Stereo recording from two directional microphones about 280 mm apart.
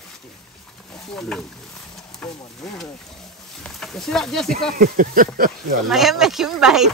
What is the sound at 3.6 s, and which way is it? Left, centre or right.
Speech, centre.